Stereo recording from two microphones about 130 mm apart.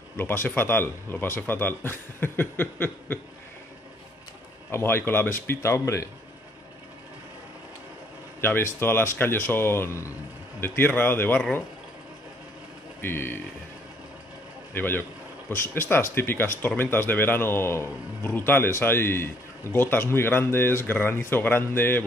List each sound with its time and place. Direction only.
0.2 s speech: 15° left (ahead or behind)
4.6 s speech: 20° left (ahead or behind)
8.4 s speech: 20° left (ahead or behind)
13.0 s speech: 15° left (ahead or behind)
14.7 s speech: 15° left (ahead or behind)